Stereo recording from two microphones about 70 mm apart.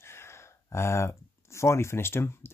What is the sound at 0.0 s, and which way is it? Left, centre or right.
Speech, left.